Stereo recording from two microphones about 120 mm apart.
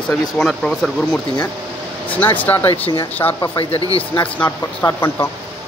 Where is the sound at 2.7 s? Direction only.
50° left (ahead or behind).